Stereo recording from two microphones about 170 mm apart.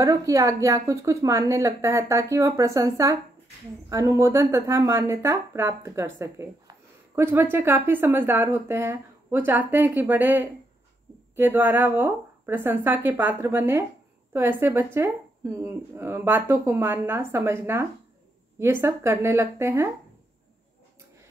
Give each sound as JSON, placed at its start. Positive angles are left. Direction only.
{"t": 0.0, "sound": "speech", "side_deg": -20}